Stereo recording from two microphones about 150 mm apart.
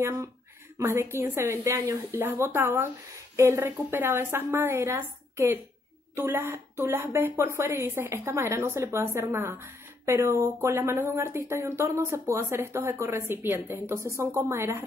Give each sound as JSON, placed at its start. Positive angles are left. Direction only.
{"t": 0.7, "sound": "a woman's voice", "side_deg": -15}